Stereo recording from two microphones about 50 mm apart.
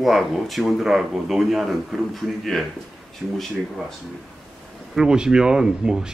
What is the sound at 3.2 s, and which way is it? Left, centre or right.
Speech, right.